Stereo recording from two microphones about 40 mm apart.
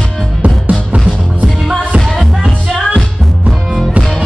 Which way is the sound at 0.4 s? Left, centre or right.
Right.